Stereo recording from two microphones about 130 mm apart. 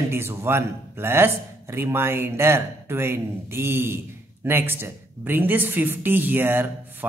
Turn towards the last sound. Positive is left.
turn(degrees=-15)  # may be behind; listen again after turning